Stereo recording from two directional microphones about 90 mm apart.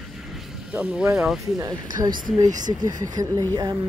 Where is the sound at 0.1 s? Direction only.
Centre (ahead or behind).